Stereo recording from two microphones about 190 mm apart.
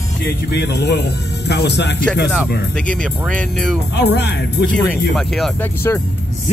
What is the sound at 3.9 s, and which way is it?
Speech, 60° left (ahead or behind).